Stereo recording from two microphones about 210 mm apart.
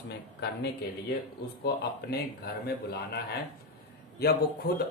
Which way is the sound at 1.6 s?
50° left (ahead or behind).